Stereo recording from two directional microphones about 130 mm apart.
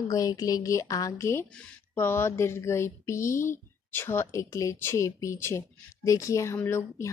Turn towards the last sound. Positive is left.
turn(degrees=20)  # may be behind; listen again after turning